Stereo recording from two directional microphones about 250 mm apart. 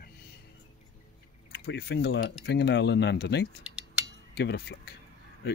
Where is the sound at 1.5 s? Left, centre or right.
Left.